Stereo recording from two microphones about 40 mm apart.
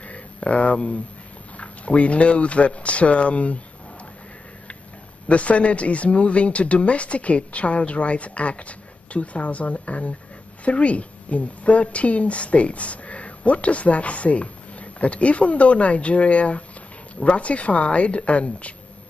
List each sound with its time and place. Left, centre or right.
0.0 s a sound: left
1.6 s a woman's voice: left
5.3 s a woman's voice: left